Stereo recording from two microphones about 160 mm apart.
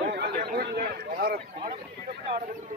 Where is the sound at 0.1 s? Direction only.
85° right; by 1.7 s 65° right (ahead or behind).